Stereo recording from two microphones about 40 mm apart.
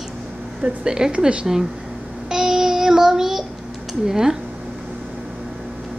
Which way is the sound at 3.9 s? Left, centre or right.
Centre.